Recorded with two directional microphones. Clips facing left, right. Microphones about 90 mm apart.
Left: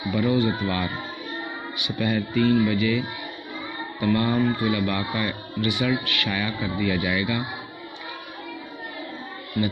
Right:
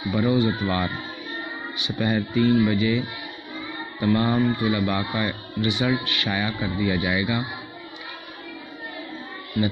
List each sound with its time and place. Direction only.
0.1 s speech: 25° right (ahead or behind)
4.0 s speech: 25° right (ahead or behind)